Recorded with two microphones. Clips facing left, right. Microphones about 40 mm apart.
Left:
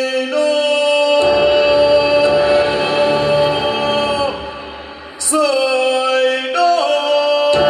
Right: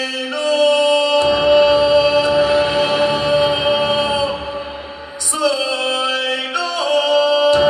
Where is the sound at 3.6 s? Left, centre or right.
Centre.